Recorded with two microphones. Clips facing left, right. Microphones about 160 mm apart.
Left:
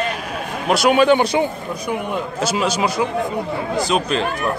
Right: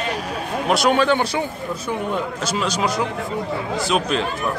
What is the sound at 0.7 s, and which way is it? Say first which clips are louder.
Speech: left 2 dB; centre (ahead or behind).